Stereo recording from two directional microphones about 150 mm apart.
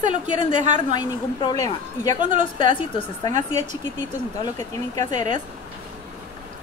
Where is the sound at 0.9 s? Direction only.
30° left (ahead or behind).